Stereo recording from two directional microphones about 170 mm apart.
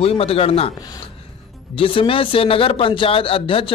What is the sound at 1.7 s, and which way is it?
Speech, 30° left (ahead or behind).